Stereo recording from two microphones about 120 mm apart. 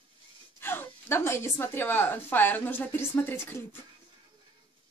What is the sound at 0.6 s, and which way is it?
A woman's voice, 20° left (ahead or behind).